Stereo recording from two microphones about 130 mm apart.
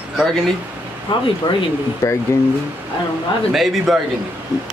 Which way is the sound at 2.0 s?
20° left (ahead or behind).